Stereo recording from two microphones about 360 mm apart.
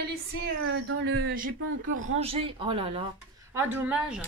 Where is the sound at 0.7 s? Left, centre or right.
Right.